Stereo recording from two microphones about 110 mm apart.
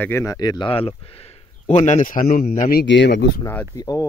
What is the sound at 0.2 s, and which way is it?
Speech, 35° left (ahead or behind).